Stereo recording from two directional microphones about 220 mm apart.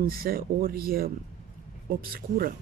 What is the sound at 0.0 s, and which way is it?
Speech, 45° right (ahead or behind).